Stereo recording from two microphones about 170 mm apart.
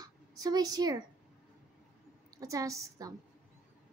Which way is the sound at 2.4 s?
20° right (ahead or behind).